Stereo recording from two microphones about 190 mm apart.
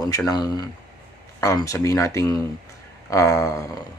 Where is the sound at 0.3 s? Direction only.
20° left (ahead or behind).